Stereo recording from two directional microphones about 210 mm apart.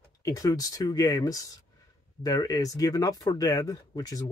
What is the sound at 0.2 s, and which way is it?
Speech, 15° left (ahead or behind).